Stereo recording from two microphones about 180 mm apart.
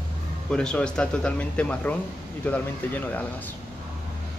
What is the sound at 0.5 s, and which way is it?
Speech, 5° left (ahead or behind).